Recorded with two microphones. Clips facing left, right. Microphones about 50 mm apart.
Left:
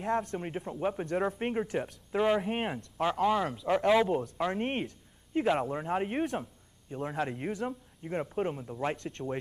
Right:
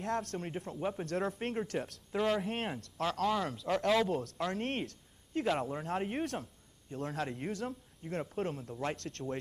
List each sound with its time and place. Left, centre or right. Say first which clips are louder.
0.0 s speech: left 4 dB; centre